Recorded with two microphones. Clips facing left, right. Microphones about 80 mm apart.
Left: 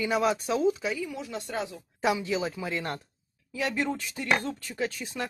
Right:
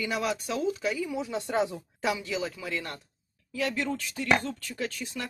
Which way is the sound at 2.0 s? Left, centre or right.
Left.